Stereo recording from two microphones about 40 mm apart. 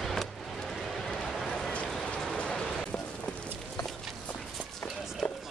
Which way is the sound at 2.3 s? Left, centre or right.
Left.